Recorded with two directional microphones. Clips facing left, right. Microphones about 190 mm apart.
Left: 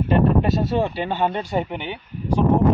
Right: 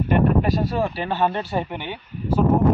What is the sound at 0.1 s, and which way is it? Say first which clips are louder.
Speech: left 1 dB; 25° left (ahead or behind).